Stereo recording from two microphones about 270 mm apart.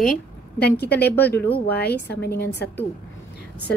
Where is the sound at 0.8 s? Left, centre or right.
Left.